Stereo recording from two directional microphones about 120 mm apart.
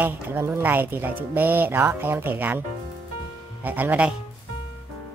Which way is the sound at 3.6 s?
15° right (ahead or behind).